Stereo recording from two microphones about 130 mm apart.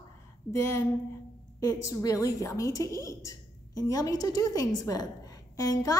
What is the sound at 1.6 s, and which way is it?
A woman's voice, 25° left (ahead or behind).